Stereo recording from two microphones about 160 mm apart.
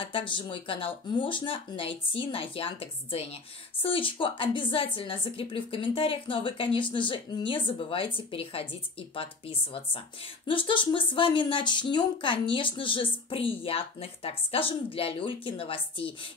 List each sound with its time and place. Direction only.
0.0 s speech: 30° left (ahead or behind)